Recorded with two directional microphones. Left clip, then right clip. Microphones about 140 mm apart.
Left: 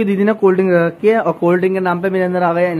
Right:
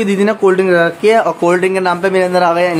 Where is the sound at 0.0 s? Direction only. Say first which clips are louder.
Right 2 dB; 10° right (ahead or behind).